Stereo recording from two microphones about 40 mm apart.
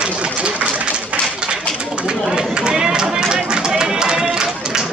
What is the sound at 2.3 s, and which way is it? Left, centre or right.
Run, right.